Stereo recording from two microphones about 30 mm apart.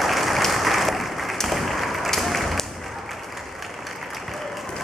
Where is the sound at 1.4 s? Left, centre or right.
Centre.